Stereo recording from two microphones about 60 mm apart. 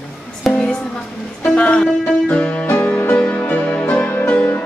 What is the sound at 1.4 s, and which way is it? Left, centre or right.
Music, centre.